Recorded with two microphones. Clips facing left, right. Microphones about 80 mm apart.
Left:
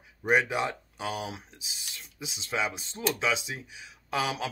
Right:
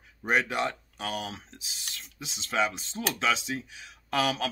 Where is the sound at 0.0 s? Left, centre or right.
Centre.